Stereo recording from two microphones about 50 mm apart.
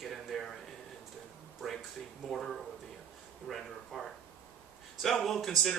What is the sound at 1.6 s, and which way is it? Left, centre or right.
Speech, centre.